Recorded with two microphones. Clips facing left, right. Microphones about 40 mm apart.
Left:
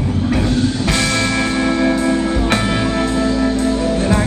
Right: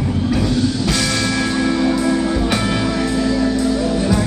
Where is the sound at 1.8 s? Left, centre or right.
Left.